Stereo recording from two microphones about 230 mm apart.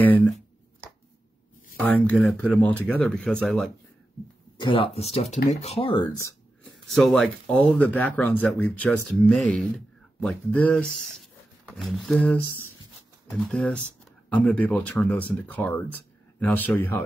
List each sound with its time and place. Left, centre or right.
0.0 s speech: centre
1.8 s speech: centre
4.6 s speech: left
6.6 s speech: centre